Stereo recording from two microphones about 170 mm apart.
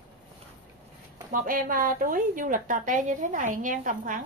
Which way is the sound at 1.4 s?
55° right (ahead or behind).